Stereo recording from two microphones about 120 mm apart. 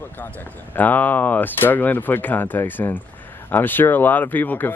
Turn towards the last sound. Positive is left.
turn(degrees=15)  # may be behind; listen again after turning